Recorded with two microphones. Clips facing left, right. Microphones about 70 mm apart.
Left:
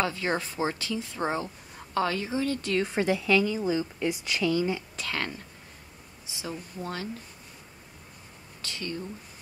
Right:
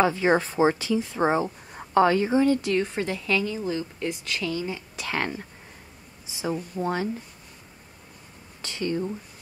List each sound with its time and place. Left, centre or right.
0.0 s a woman's voice: right
2.8 s a woman's voice: centre
4.5 s speech: centre
5.0 s a woman's voice: centre
8.6 s a woman's voice: right